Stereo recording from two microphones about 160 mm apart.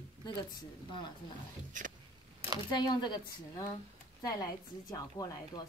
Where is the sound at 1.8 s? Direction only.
55° right (ahead or behind).